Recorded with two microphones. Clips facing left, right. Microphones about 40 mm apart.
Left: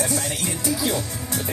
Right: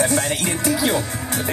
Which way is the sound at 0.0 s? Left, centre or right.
Right.